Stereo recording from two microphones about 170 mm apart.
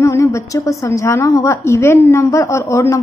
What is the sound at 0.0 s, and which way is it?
A woman's voice, 15° left (ahead or behind).